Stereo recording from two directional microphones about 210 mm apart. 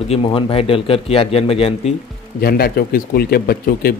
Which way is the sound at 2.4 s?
45° left (ahead or behind).